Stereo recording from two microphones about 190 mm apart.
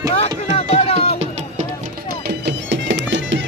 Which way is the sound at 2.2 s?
65° right (ahead or behind).